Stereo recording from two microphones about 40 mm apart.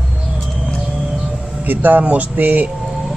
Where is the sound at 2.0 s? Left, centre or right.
Right.